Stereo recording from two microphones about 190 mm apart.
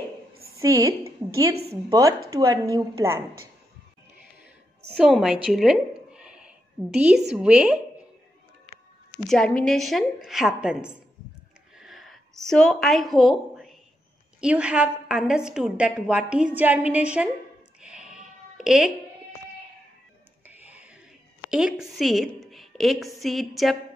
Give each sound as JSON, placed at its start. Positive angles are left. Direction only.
{"t": 0.6, "sound": "a woman's voice", "side_deg": -15}
{"t": 4.9, "sound": "a woman's voice", "side_deg": -5}
{"t": 9.3, "sound": "a woman's voice", "side_deg": 5}
{"t": 11.7, "sound": "a sound", "side_deg": 0}
{"t": 14.4, "sound": "a woman's voice", "side_deg": -5}
{"t": 17.7, "sound": "a sound", "side_deg": -5}
{"t": 20.4, "sound": "whispering", "side_deg": -10}
{"t": 21.5, "sound": "a woman's voice", "side_deg": -5}